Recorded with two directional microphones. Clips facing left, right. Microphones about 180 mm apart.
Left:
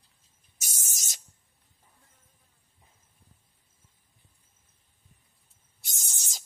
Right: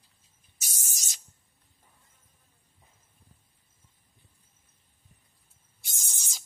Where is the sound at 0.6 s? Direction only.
50° left (ahead or behind).